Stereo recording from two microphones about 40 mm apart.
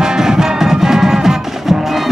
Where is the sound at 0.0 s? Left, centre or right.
Centre.